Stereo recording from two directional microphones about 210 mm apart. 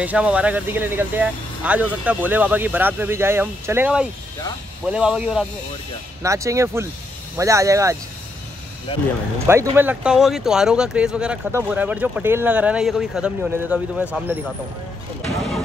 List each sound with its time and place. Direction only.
0.0 s speech: 5° right (ahead or behind)
6.2 s speech: 15° right (ahead or behind)
8.9 s speech: 25° left (ahead or behind)
9.5 s speech: 10° right (ahead or behind)